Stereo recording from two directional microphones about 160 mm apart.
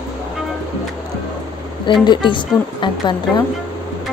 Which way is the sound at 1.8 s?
30° left (ahead or behind).